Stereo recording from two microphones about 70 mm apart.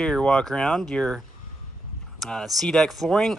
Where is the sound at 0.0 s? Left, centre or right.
Centre.